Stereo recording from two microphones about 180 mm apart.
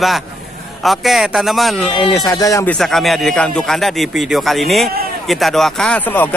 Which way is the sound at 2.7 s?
Centre (ahead or behind).